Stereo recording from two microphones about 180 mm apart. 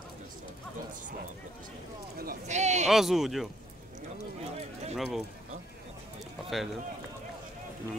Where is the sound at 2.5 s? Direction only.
40° right (ahead or behind).